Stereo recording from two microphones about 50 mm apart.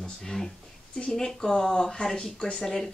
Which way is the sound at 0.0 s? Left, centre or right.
Centre.